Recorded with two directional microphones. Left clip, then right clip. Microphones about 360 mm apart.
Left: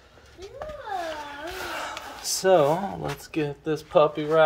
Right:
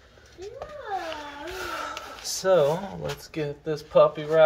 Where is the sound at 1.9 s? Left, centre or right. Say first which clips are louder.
Left 2 dB; left.